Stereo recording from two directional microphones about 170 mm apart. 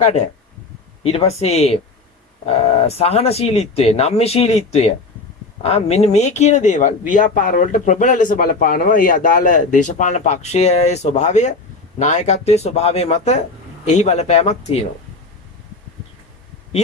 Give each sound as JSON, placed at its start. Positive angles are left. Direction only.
{"t": 0.0, "sound": "speech", "side_deg": 40}